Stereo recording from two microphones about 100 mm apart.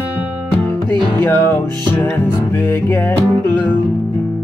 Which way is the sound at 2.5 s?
20° left (ahead or behind).